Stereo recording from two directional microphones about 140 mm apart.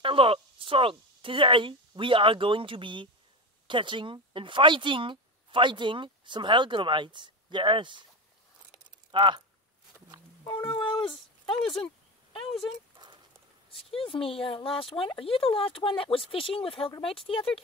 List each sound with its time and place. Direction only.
0.0 s speech: 40° right (ahead or behind)
9.1 s speech: 35° right (ahead or behind)
10.7 s a sound: 35° left (ahead or behind)
13.7 s speech: 40° left (ahead or behind)